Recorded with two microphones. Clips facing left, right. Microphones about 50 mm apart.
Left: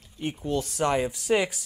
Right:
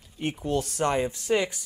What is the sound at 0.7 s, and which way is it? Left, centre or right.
Speech, centre.